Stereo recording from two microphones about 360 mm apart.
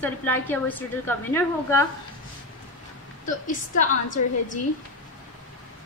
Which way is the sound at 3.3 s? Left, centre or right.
Left.